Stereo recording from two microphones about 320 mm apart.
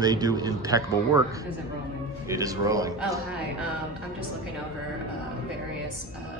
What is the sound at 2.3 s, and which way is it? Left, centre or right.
Speech, centre.